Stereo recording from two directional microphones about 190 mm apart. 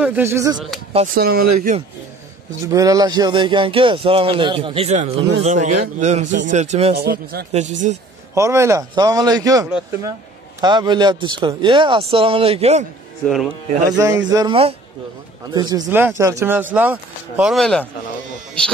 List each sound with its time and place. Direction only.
0.0 s a man's voice: 10° right (ahead or behind)
1.1 s speech: 50° right (ahead or behind)
2.6 s speech: 20° right (ahead or behind); by 7.0 s 35° right (ahead or behind)
7.0 s speech: 55° right (ahead or behind)
7.5 s speech: 40° right (ahead or behind)
8.4 s speech: 15° right (ahead or behind); by 12.8 s 35° right (ahead or behind)
13.8 s a man's voice: 15° right (ahead or behind)
14.5 s a man's voice: 30° right (ahead or behind); by 17.8 s centre (ahead or behind)